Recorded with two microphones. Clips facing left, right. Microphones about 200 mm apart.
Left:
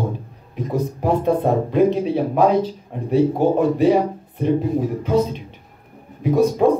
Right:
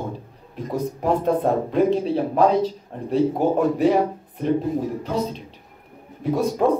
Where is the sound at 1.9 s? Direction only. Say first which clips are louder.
Left 1 dB; 15° left (ahead or behind).